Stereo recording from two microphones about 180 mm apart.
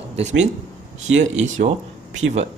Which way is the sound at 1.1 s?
90° right.